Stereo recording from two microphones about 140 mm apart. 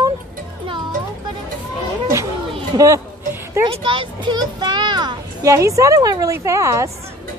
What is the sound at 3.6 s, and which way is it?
A child's voice, 35° right (ahead or behind).